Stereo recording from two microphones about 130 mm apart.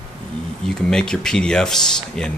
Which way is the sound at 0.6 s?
5° left (ahead or behind).